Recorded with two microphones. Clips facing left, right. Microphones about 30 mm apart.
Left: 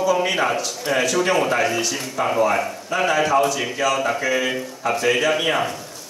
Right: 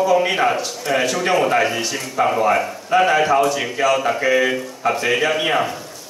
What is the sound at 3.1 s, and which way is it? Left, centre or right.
Speech, right.